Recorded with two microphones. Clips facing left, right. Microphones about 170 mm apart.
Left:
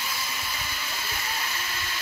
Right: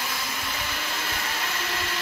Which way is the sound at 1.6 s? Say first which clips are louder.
Right 5 dB; 75° right (ahead or behind).